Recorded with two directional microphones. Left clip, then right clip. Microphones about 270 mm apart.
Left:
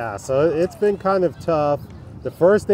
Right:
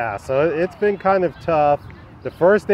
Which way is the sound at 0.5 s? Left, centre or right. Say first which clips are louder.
Even; centre.